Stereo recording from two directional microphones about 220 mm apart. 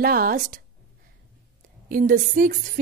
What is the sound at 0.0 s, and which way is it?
Speech, 40° right (ahead or behind).